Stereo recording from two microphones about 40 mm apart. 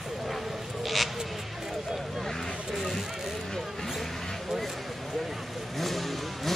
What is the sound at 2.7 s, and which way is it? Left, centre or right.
Speech, centre.